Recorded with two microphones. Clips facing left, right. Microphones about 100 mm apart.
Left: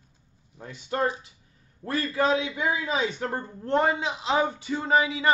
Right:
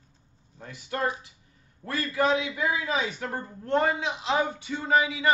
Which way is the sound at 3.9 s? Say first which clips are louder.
Left 1 dB; 30° left (ahead or behind).